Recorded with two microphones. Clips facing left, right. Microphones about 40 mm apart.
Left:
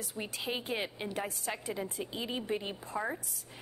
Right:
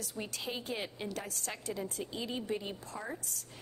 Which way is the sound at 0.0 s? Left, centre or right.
Left.